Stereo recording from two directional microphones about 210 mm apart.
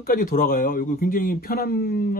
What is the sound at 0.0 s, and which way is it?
A man's voice, 40° left (ahead or behind).